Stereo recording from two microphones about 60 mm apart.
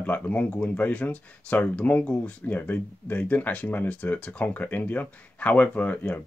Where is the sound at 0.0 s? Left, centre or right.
Left.